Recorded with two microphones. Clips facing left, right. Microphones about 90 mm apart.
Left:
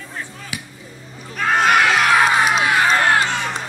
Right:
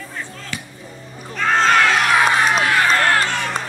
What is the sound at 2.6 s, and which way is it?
Run, 20° left (ahead or behind).